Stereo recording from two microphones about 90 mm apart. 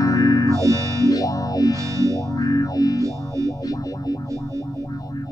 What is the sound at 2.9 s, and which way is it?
Music, 35° right (ahead or behind).